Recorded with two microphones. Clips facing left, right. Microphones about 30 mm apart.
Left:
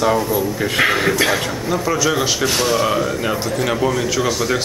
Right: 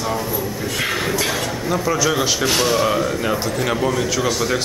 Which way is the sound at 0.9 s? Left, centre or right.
Centre.